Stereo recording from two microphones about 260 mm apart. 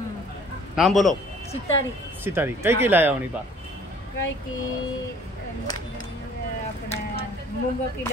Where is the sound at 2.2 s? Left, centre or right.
Centre.